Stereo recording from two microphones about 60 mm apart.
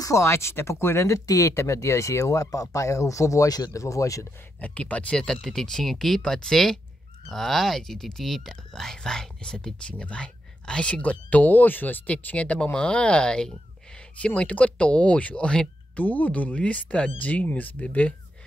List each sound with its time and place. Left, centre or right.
0.0 s speech: left
1.2 s speech: left
4.6 s speech: left